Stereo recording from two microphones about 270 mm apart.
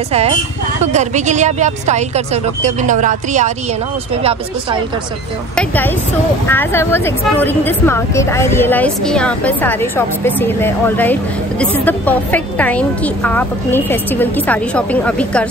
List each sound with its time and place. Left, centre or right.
0.9 s speech: right
6.5 s a woman's voice: centre